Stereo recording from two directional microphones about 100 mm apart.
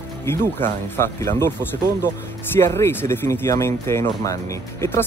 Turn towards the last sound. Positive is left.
turn(degrees=30)  # may be behind; listen again after turning